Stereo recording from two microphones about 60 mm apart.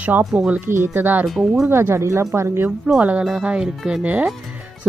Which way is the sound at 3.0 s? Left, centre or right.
Right.